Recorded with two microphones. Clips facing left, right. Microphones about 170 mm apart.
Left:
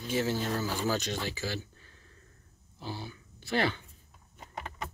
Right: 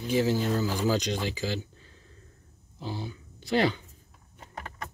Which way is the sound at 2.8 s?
20° right (ahead or behind).